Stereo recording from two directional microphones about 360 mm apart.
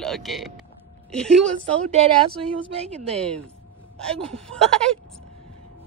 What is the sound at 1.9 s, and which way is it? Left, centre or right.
Speech, centre.